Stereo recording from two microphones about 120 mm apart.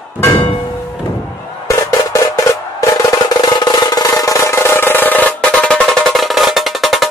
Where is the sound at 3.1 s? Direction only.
35° left (ahead or behind).